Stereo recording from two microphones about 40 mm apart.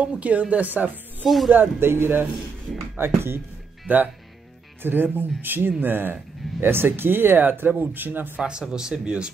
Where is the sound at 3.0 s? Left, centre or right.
Right.